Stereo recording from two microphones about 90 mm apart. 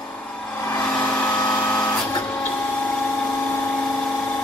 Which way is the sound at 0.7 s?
20° left (ahead or behind).